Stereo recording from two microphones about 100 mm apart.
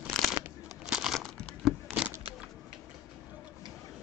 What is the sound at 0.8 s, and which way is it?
Crumpling, 5° right (ahead or behind).